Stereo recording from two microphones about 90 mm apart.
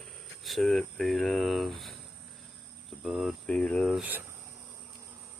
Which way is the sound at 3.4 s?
10° left (ahead or behind).